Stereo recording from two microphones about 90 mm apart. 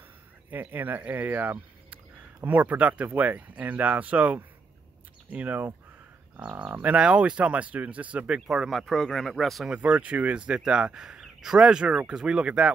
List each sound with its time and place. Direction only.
0.5 s speech: 20° right (ahead or behind)
8.5 s speech: centre (ahead or behind)
9.7 s speech: 15° right (ahead or behind)